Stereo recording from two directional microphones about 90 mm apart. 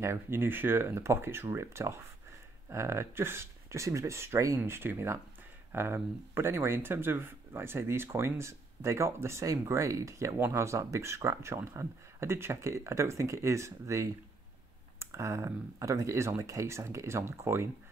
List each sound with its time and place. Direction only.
0.0 s speech: 30° right (ahead or behind)